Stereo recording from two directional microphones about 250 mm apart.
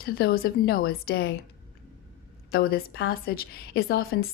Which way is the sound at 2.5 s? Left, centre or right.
Left.